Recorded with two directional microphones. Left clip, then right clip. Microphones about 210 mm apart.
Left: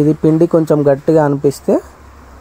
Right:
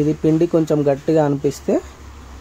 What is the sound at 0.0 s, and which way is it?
Speech, 20° left (ahead or behind).